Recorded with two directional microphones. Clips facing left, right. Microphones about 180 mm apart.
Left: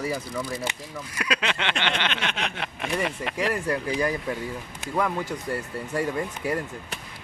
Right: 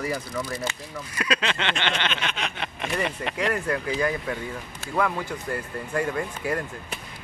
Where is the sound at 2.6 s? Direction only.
5° left (ahead or behind).